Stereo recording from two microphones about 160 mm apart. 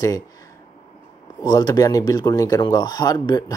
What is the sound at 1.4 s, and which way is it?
Speech, 25° left (ahead or behind).